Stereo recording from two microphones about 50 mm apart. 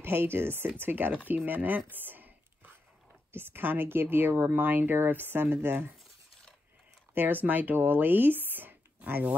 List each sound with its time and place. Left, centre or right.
0.0 s speech: right
1.9 s a sound: right
3.3 s speech: right
7.2 s speech: right